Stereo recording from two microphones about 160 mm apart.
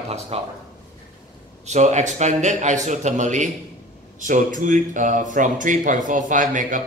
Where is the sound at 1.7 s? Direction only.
45° right (ahead or behind).